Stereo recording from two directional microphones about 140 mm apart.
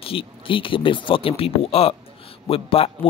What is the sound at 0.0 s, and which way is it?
Speech, 40° left (ahead or behind).